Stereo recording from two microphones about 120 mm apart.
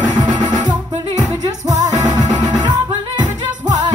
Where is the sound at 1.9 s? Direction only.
30° right (ahead or behind).